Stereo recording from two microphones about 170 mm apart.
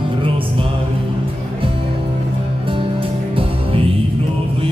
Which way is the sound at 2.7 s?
30° right (ahead or behind).